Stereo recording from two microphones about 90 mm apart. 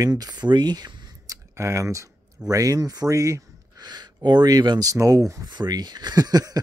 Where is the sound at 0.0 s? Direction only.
45° right (ahead or behind).